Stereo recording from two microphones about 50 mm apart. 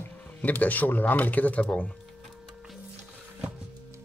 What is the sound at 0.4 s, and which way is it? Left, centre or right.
Speech, left.